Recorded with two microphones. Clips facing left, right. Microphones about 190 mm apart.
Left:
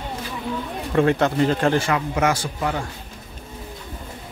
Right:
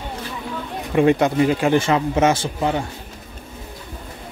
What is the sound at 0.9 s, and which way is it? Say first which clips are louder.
Speech: right 3 dB; 15° right (ahead or behind).